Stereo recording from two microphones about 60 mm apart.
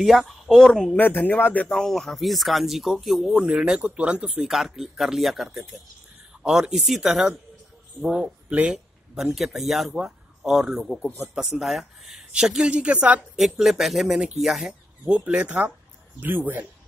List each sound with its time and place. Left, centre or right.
0.0 s speech: centre
0.9 s speech: left
1.7 s speech: centre
3.3 s speech: centre
4.5 s speech: centre; by 13.2 s right
13.4 s speech: centre
14.7 s a man's voice: centre